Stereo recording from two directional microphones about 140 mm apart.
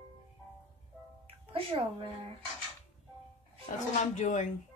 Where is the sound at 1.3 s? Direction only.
40° right (ahead or behind).